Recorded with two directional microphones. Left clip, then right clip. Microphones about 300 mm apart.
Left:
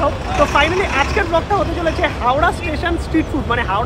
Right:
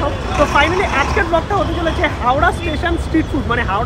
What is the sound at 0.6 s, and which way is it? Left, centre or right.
Speech, centre.